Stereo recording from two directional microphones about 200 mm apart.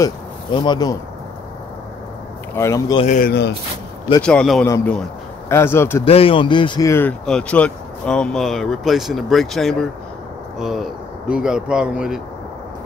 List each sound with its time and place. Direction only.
0.0 s speech: 20° left (ahead or behind)
2.5 s speech: 15° left (ahead or behind)
3.2 s speech: 55° left (ahead or behind)
4.2 s speech: 5° left (ahead or behind)
4.6 s speech: 15° left (ahead or behind)
6.0 s speech: 30° left (ahead or behind); by 12.2 s 5° right (ahead or behind)